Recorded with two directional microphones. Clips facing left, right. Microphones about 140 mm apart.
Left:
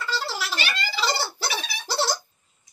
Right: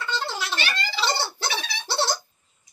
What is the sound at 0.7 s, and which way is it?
Giggle, 10° left (ahead or behind).